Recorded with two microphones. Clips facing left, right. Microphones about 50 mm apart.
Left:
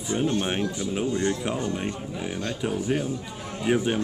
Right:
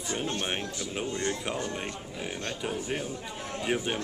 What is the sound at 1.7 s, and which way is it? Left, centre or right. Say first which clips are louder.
A man's voice: left 5 dB; centre.